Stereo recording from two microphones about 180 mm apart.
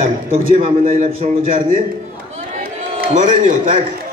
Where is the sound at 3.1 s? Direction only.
45° right (ahead or behind).